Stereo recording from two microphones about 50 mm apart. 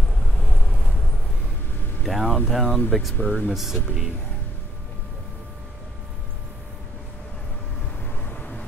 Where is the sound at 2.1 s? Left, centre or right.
Centre.